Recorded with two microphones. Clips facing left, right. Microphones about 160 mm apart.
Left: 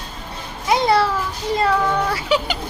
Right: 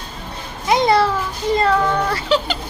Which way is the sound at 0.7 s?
5° left (ahead or behind).